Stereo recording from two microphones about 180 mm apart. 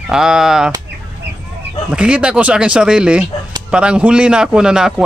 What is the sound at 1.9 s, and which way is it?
Speech, 5° right (ahead or behind).